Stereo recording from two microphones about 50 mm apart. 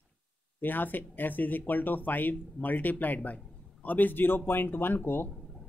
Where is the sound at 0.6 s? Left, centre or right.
Left.